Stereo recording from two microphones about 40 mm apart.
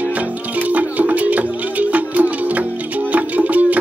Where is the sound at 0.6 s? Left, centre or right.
Right.